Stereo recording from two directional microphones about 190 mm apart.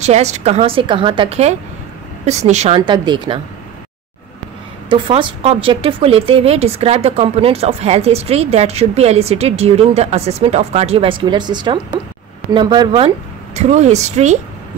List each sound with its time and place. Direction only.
0.0 s speech: 35° right (ahead or behind)
2.8 s speech: 25° right (ahead or behind)
4.8 s speech: 25° right (ahead or behind)
13.6 s speech: 35° right (ahead or behind)